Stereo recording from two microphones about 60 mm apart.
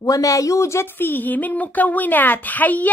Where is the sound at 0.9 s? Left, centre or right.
Left.